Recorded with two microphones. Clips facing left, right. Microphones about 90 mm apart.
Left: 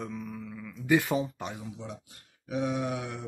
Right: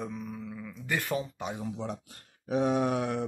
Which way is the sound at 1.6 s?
50° right (ahead or behind).